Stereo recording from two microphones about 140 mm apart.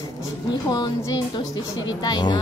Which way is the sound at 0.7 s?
30° left (ahead or behind).